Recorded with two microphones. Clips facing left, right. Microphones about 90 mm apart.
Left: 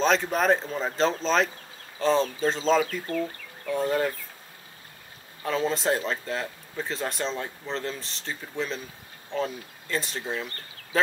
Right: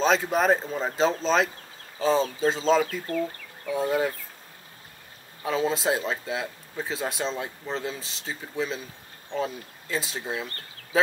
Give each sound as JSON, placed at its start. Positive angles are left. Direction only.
{"t": 0.0, "sound": "speech", "side_deg": -5}
{"t": 5.4, "sound": "speech", "side_deg": -5}